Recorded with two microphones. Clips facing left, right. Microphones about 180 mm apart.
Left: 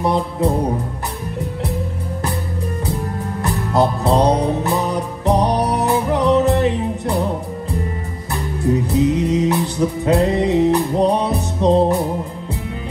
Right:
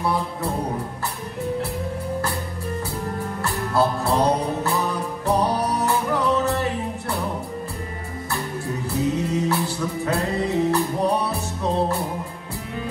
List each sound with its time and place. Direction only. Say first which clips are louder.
0.0 s a man's voice: left 6 dB; 20° left (ahead or behind)
3.4 s music: left 4 dB; 20° left (ahead or behind)
8.6 s music: left 9 dB; 20° left (ahead or behind)